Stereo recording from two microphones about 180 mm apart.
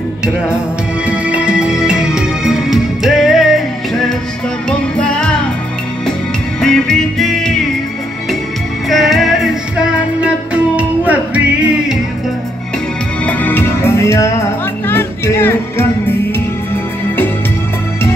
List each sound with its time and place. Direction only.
1.0 s music: 5° right (ahead or behind)
6.6 s music: 5° left (ahead or behind)
8.8 s music: centre (ahead or behind)
13.2 s music: 10° left (ahead or behind)